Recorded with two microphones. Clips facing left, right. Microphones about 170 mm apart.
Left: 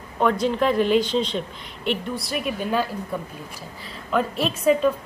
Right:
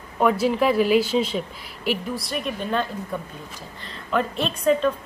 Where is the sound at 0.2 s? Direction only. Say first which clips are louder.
Right 1 dB; 5° right (ahead or behind).